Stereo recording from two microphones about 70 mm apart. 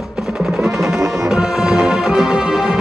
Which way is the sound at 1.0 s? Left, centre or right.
Right.